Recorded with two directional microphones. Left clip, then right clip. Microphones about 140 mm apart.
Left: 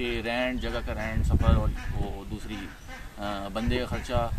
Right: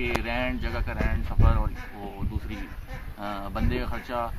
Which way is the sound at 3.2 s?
35° left (ahead or behind).